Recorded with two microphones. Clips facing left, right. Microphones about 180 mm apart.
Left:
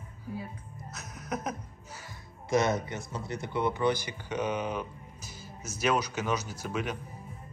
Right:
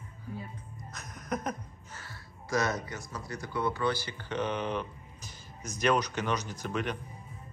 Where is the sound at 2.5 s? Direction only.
25° left (ahead or behind); by 6.9 s 5° left (ahead or behind).